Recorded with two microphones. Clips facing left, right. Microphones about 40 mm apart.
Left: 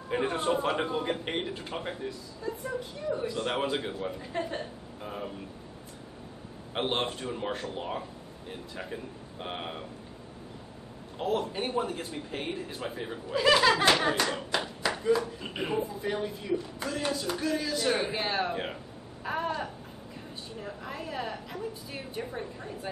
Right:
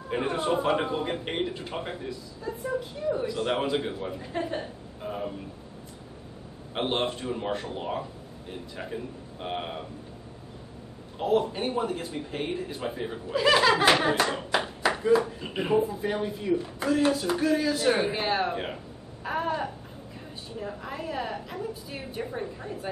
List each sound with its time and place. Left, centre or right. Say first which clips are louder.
0.1 s a man's voice: right 1 dB; centre
6.7 s a man's voice: right 2 dB; centre
11.1 s a man's voice: right 5 dB; centre
14.3 s clapping: right 4 dB; centre
15.0 s a man's voice: right 4 dB; centre